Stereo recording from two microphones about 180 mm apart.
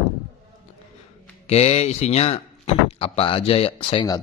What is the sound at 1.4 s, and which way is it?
Speech, 35° left (ahead or behind).